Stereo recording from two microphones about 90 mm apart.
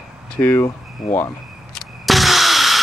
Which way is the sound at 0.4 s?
25° left (ahead or behind).